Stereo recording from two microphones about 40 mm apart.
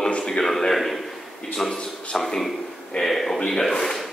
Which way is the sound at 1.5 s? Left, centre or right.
Centre.